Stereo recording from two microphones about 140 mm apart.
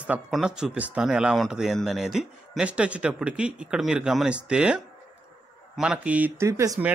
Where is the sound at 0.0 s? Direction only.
5° right (ahead or behind); by 6.8 s 25° right (ahead or behind).